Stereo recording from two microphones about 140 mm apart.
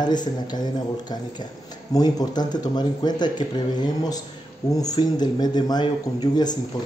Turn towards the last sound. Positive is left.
turn(degrees=30)  # may be behind; listen again after turning